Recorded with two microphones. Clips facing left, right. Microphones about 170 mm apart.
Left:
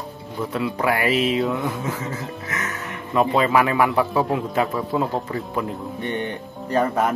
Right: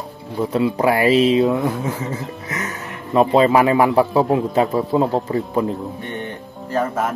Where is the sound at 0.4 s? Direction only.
25° right (ahead or behind).